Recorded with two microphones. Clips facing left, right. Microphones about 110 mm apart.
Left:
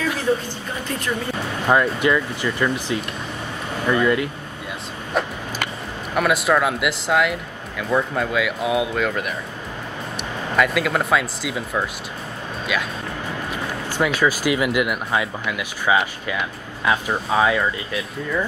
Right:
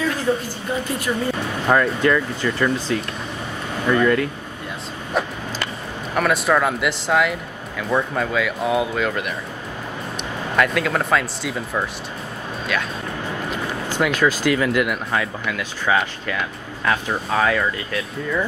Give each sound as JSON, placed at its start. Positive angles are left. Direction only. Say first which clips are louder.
{"t": 1.7, "sound": "speech", "louder": "even", "side_deg": 10}
{"t": 5.1, "sound": "vehicle", "louder": "even", "side_deg": 0}
{"t": 6.1, "sound": "speech", "louder": "even", "side_deg": 0}
{"t": 10.5, "sound": "speech", "louder": "even", "side_deg": 5}
{"t": 14.0, "sound": "speech", "louder": "right 1 dB", "side_deg": 10}